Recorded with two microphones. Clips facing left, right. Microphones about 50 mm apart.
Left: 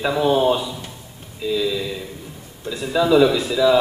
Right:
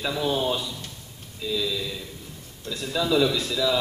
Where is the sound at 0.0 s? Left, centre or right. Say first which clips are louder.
Left 8 dB; centre.